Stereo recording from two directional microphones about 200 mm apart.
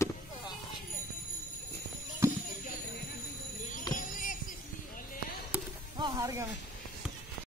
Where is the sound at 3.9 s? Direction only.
40° left (ahead or behind).